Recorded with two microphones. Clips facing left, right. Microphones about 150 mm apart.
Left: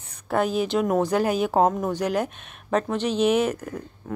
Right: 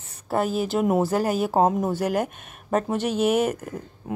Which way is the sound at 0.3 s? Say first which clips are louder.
Left 1 dB; 5° right (ahead or behind).